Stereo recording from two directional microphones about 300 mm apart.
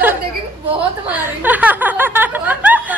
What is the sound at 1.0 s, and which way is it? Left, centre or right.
A woman's voice, centre.